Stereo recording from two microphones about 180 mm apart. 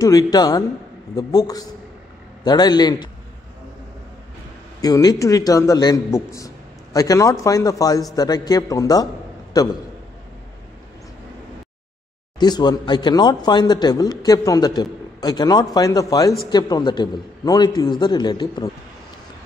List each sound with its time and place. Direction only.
0.0 s a man's voice: 20° left (ahead or behind)
4.8 s a man's voice: 20° left (ahead or behind)
12.4 s a man's voice: 25° left (ahead or behind)